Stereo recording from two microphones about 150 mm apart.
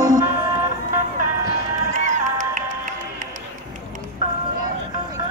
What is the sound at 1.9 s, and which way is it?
Music, 60° right (ahead or behind).